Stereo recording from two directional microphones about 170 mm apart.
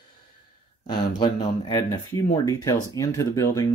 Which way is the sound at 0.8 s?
25° left (ahead or behind).